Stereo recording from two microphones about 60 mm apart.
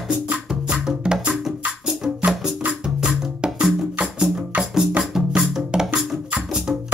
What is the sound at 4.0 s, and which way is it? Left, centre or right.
Music, centre.